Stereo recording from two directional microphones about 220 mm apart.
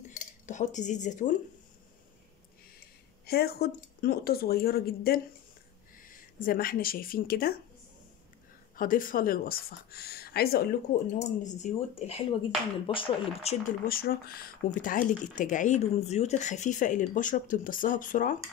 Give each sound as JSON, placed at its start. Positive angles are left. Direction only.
{"t": 0.1, "sound": "speech", "side_deg": 35}
{"t": 3.3, "sound": "speech", "side_deg": 45}
{"t": 8.7, "sound": "speech", "side_deg": 40}
{"t": 11.1, "sound": "speech", "side_deg": 30}
{"t": 13.8, "sound": "speech", "side_deg": 40}